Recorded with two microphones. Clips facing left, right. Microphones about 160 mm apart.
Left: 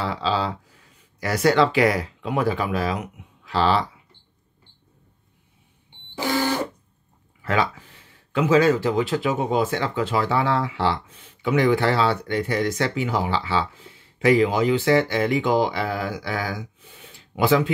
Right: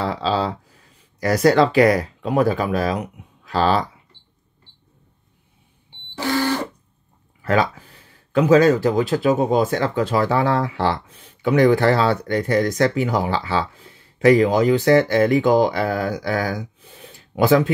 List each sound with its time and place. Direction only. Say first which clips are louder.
0.0 s speech: right 3 dB; 40° right (ahead or behind)
6.1 s a sound: right 2 dB; 15° left (ahead or behind)
7.4 s speech: right 4 dB; 40° right (ahead or behind)